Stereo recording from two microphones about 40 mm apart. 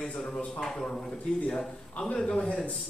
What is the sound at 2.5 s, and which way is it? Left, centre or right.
Speech, left.